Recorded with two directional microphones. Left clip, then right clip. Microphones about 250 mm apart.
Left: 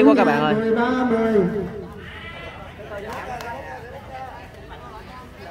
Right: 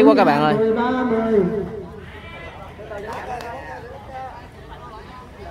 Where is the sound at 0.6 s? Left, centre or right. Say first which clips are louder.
Right 1 dB; left.